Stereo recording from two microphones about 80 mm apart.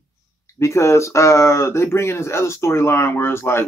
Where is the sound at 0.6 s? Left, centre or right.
Left.